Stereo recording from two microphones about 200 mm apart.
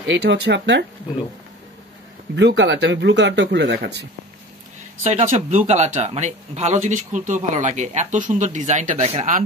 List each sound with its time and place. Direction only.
0.0 s speech: 60° right (ahead or behind)
2.3 s speech: 60° right (ahead or behind)
5.1 s speech: 35° right (ahead or behind)